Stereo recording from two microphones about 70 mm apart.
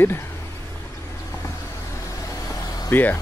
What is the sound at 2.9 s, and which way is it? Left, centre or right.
Speech, left.